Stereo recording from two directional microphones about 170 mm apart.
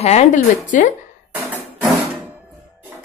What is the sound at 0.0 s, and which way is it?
Speech, 40° left (ahead or behind).